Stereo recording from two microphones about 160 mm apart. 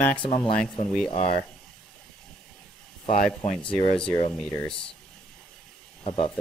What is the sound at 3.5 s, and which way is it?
Speech, centre (ahead or behind).